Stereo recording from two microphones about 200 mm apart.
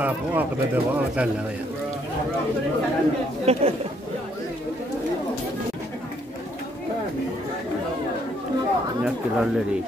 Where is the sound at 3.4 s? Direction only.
30° right (ahead or behind).